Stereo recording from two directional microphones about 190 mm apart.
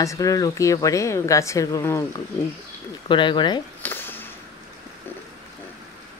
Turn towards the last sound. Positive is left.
turn(degrees=10)  # may be behind; listen again after turning